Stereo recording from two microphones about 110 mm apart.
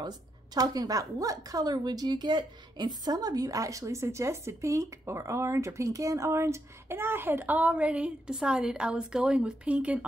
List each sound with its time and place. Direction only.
0.6 s speech: 35° right (ahead or behind); by 10.0 s 10° right (ahead or behind)